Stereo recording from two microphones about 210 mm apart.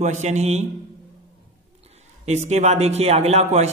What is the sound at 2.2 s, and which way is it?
Speech, 30° right (ahead or behind).